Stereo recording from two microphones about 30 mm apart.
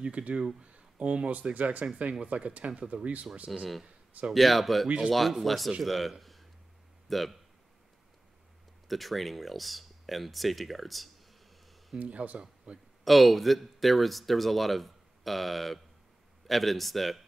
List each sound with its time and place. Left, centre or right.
0.0 s speech: right
2.2 s speech: right
3.5 s speech: centre
4.8 s speech: right
5.3 s speech: centre
8.8 s speech: centre
12.0 s speech: right
12.7 s speech: right
13.0 s speech: centre